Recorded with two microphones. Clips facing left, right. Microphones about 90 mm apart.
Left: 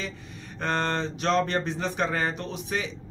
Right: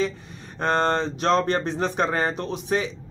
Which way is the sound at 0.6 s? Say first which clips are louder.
Right 5 dB; 35° right (ahead or behind).